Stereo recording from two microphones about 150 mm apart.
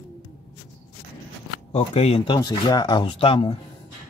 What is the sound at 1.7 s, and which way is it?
Speech, 40° left (ahead or behind).